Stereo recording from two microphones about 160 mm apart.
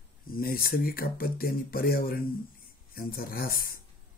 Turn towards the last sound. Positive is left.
turn(degrees=65)  # may be behind; listen again after turning